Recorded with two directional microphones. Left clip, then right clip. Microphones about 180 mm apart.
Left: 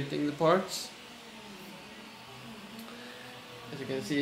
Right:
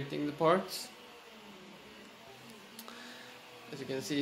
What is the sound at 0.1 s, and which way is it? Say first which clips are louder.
Speech: left 3 dB; 20° right (ahead or behind).